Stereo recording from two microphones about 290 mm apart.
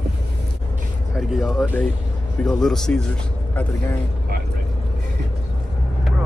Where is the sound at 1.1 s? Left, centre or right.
Centre.